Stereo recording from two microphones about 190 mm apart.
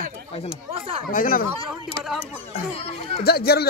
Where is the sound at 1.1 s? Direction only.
45° left (ahead or behind).